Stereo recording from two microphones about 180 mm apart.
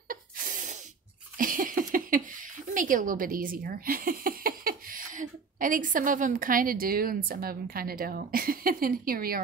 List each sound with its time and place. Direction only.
0.1 s spray: 45° right (ahead or behind)
1.4 s speech: 50° right (ahead or behind)